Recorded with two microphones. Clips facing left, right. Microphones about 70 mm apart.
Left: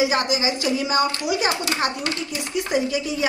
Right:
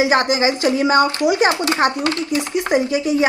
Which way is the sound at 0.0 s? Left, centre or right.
Right.